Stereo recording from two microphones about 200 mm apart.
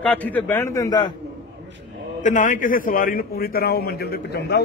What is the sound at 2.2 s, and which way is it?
A man's voice, 40° left (ahead or behind).